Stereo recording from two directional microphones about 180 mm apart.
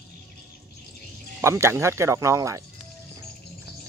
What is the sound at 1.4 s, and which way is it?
Speech, 15° right (ahead or behind).